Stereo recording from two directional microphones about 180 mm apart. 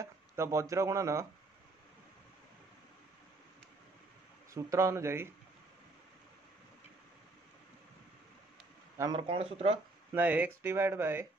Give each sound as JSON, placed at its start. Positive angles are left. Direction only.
{"t": 0.0, "sound": "speech", "side_deg": -15}
{"t": 4.6, "sound": "speech", "side_deg": -15}
{"t": 8.9, "sound": "speech", "side_deg": -20}
{"t": 9.3, "sound": "speech", "side_deg": -30}
{"t": 10.1, "sound": "speech", "side_deg": -10}